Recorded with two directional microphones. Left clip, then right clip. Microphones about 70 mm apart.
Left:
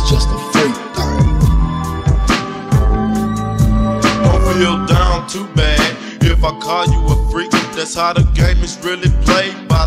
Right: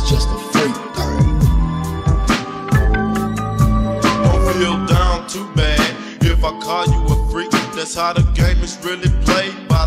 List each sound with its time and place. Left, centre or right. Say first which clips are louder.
0.0 s music: left 3 dB; left